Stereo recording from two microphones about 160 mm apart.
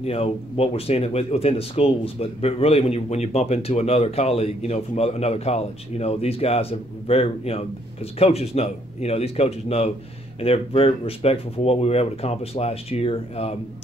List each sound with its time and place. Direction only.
0.0 s speech: 40° left (ahead or behind)